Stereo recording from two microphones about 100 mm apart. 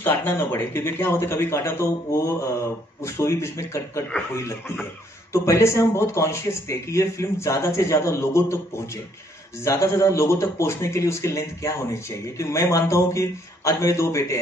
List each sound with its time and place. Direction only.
0.0 s speech: 20° left (ahead or behind)